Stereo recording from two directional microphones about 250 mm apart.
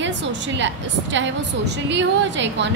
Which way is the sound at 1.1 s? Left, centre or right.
Right.